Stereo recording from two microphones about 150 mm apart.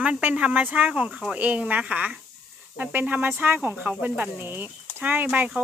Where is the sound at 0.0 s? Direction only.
10° right (ahead or behind).